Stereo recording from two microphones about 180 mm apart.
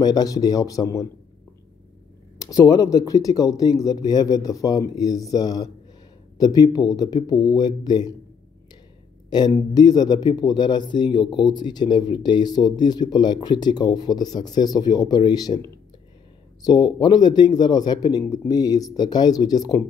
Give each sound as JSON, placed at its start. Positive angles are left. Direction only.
{"t": 0.0, "sound": "speech", "side_deg": 20}
{"t": 2.3, "sound": "speech", "side_deg": 20}
{"t": 9.3, "sound": "speech", "side_deg": 25}